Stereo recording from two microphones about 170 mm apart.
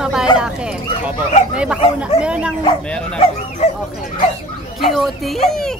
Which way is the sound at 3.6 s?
40° left (ahead or behind).